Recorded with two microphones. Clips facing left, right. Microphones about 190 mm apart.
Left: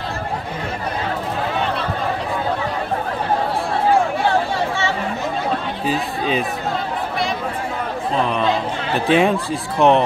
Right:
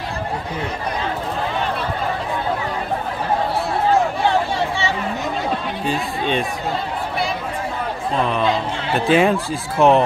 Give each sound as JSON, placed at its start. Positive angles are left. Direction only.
{"t": 5.9, "sound": "speech", "side_deg": 5}
{"t": 8.2, "sound": "speech", "side_deg": 0}